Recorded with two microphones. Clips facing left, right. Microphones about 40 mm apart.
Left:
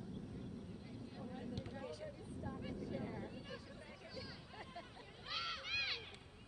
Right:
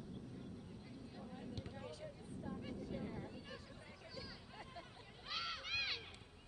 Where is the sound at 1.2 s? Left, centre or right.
Centre.